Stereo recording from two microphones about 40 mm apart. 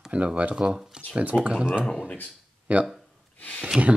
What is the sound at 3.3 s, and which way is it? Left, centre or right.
Speech, left.